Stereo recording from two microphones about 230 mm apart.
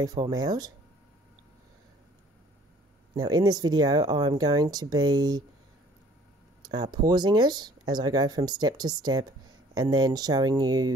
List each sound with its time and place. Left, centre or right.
0.0 s speech: centre
3.2 s speech: centre
6.7 s speech: centre